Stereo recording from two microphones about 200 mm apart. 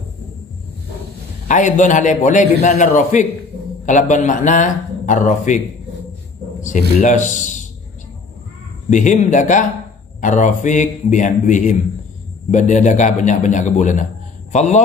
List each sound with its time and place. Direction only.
1.5 s speech: 40° left (ahead or behind)
6.6 s speech: 40° left (ahead or behind)
8.9 s a man's voice: 40° left (ahead or behind)